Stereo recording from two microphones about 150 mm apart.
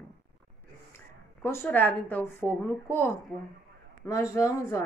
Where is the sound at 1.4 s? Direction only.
15° left (ahead or behind).